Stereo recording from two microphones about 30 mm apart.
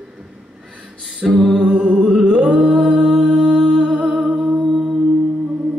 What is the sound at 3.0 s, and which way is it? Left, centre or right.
Music, right.